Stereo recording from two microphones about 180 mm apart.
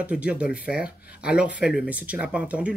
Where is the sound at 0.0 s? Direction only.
5° right (ahead or behind).